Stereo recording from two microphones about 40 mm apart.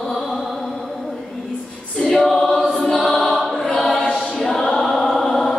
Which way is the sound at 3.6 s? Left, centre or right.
Centre.